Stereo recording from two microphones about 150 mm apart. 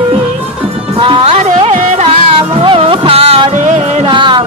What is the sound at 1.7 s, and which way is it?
Music, 60° right (ahead or behind).